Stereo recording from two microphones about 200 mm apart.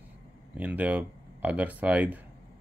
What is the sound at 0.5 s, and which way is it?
Speech, 5° right (ahead or behind).